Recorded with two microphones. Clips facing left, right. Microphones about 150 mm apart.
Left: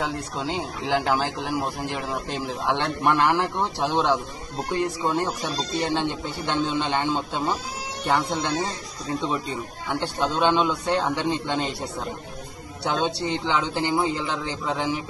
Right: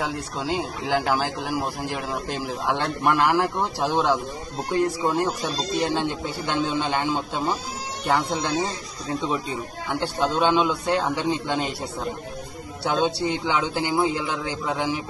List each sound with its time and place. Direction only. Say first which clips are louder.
0.6 s a man's voice: left 1 dB; 10° right (ahead or behind)
9.8 s a man's voice: right 1 dB; 5° right (ahead or behind)